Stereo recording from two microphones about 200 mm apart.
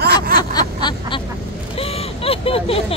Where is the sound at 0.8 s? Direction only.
20° left (ahead or behind).